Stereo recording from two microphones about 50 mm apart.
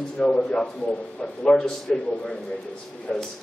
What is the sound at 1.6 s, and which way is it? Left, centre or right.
Speech, centre.